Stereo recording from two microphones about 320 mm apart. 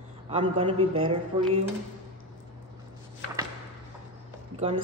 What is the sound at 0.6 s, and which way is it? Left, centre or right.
Speech, centre.